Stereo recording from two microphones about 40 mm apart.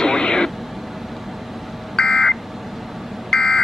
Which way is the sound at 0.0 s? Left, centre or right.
Centre.